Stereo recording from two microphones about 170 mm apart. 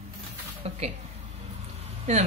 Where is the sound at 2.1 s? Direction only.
40° right (ahead or behind).